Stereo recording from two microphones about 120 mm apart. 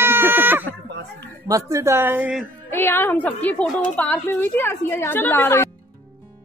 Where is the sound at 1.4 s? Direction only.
30° right (ahead or behind); by 2.4 s 10° right (ahead or behind).